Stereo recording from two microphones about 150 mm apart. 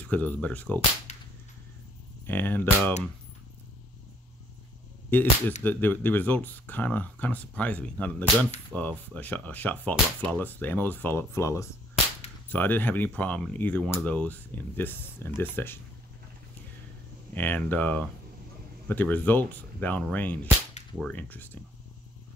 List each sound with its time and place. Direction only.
0.0 s speech: 10° left (ahead or behind)
1.1 s whip: 50° left (ahead or behind)
2.2 s speech: 15° left (ahead or behind)
5.1 s speech: 10° left (ahead or behind)
17.3 s speech: 10° left (ahead or behind)